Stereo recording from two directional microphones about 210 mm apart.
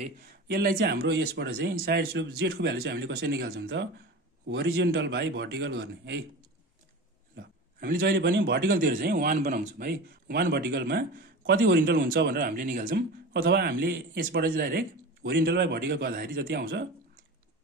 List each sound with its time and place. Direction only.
0.5 s a man's voice: 45° right (ahead or behind)
7.3 s a man's voice: 50° right (ahead or behind)